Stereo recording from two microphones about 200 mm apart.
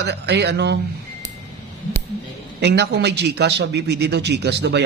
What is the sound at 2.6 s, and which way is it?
A man's voice, 55° right (ahead or behind).